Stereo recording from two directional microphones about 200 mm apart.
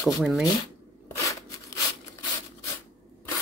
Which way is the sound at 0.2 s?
Centre (ahead or behind).